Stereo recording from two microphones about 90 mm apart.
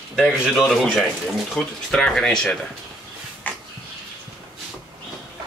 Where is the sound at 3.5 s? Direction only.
20° left (ahead or behind).